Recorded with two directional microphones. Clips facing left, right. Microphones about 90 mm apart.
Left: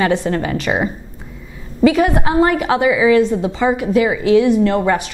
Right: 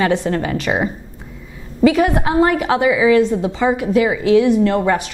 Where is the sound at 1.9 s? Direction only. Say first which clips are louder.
Even; 15° left (ahead or behind).